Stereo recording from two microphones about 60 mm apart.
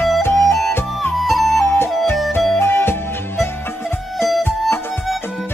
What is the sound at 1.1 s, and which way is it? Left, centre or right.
Flute, centre.